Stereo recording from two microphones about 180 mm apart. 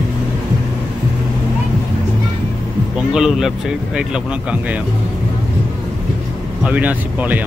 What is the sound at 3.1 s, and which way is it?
Speech, centre (ahead or behind).